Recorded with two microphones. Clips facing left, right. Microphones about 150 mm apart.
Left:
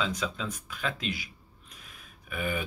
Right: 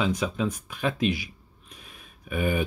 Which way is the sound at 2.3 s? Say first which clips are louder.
Right 6 dB; 25° right (ahead or behind).